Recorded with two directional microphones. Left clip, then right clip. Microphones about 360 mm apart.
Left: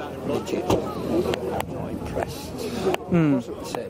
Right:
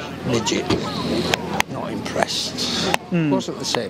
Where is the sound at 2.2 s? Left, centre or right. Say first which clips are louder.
Right 8 dB; right.